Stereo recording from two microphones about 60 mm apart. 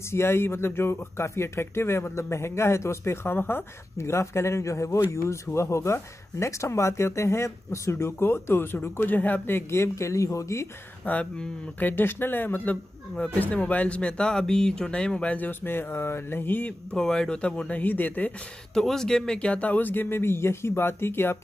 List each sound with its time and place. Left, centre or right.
0.1 s speech: left
3.3 s speech: left
11.1 s speech: left
11.8 s speech: left; by 15.3 s centre
15.3 s speech: left
16.9 s speech: centre; by 18.3 s left
18.8 s speech: centre; by 21.4 s left